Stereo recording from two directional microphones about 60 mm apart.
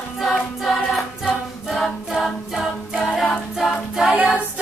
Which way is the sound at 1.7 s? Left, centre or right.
Centre.